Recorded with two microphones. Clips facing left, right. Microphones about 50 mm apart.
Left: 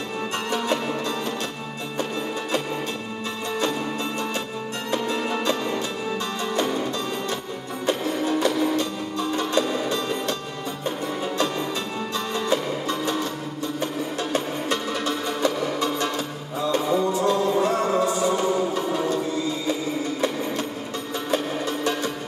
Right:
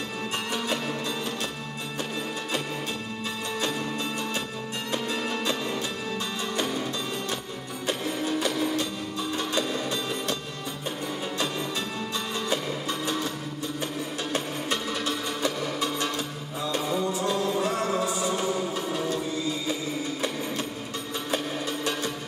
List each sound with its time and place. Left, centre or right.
0.5 s music: centre
4.9 s music: centre
12.4 s music: centre
14.3 s music: centre